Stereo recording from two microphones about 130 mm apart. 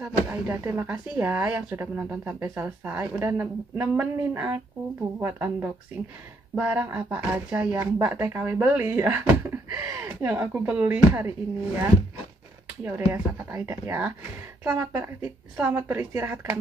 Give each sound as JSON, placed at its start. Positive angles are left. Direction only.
{"t": 0.0, "sound": "a woman's voice", "side_deg": -20}